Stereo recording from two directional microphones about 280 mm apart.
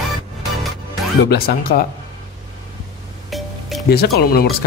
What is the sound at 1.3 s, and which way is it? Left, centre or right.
Speech, left.